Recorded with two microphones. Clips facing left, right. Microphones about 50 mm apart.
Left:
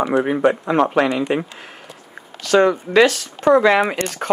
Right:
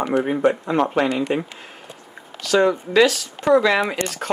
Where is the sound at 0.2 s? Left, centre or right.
Left.